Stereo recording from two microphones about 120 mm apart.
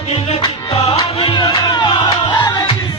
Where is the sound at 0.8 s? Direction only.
40° left (ahead or behind).